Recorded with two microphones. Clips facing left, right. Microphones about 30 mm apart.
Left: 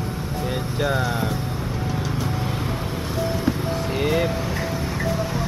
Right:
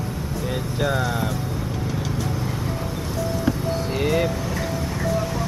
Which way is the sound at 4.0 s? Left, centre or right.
Centre.